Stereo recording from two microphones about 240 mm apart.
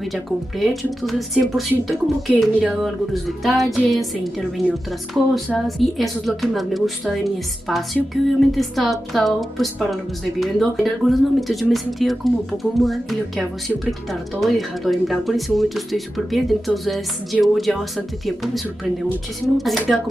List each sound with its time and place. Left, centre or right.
0.0 s speech: centre